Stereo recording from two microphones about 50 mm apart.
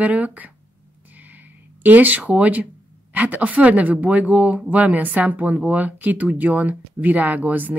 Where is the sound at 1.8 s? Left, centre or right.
Right.